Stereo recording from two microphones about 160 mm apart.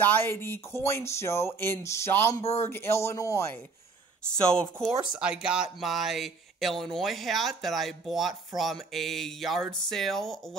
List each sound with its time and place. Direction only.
0.0 s speech: 15° left (ahead or behind)
2.4 s speech: 40° left (ahead or behind)
2.7 s speech: 15° left (ahead or behind)
4.3 s speech: 5° left (ahead or behind)